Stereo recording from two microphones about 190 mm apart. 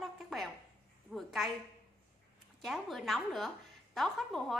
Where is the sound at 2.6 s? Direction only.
Centre (ahead or behind).